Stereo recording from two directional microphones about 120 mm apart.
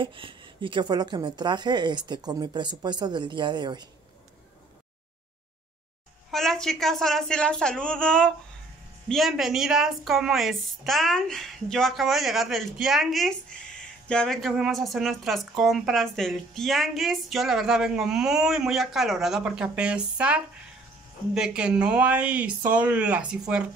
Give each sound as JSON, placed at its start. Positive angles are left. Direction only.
{"t": 0.0, "sound": "a woman's voice", "side_deg": -45}
{"t": 6.3, "sound": "a woman's voice", "side_deg": 5}